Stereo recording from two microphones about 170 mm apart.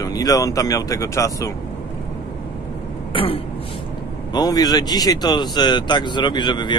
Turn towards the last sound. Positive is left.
turn(degrees=25)  # may be behind; listen again after turning